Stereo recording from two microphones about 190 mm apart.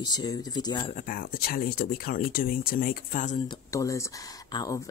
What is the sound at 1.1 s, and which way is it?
Speech, 50° left (ahead or behind).